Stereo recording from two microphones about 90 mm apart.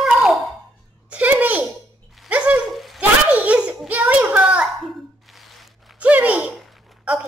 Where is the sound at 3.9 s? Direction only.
15° right (ahead or behind).